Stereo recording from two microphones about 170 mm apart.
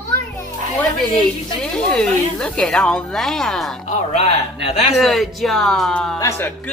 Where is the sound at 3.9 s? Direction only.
40° left (ahead or behind).